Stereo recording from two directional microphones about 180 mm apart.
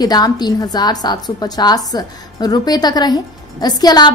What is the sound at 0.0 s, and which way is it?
A woman's voice, 20° left (ahead or behind).